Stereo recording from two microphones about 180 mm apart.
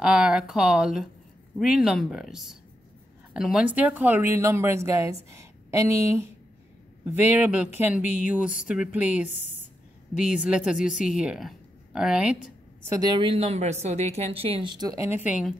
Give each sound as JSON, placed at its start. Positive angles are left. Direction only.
{"t": 0.0, "sound": "speech", "side_deg": -5}
{"t": 9.3, "sound": "a woman's voice", "side_deg": 40}
{"t": 10.1, "sound": "speech", "side_deg": -5}
{"t": 12.8, "sound": "a woman's voice", "side_deg": -20}